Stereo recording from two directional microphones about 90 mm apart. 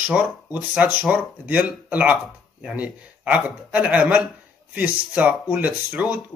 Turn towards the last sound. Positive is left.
turn(degrees=-10)  # may be behind; listen again after turning